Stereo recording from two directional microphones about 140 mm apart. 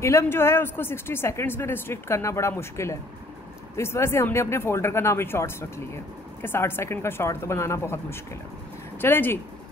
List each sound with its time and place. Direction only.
0.0 s speech: 20° left (ahead or behind)